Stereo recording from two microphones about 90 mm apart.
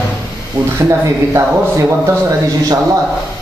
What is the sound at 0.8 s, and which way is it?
A man's voice, 35° right (ahead or behind).